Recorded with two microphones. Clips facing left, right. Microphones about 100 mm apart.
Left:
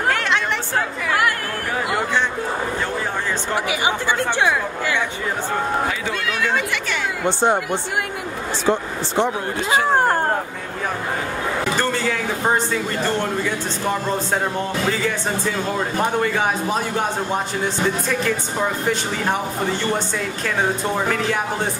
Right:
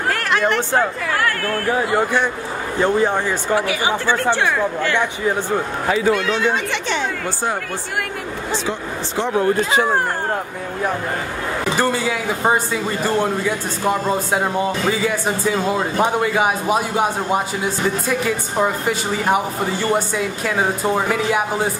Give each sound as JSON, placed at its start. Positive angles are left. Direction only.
{"t": 0.1, "sound": "chatter", "side_deg": -5}
{"t": 3.5, "sound": "speech", "side_deg": 15}
{"t": 6.2, "sound": "speech", "side_deg": -25}
{"t": 11.8, "sound": "speech", "side_deg": -10}